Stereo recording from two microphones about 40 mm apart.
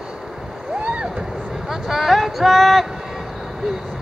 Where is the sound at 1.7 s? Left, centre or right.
Centre.